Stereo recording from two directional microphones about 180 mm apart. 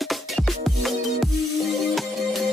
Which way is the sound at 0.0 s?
Centre (ahead or behind).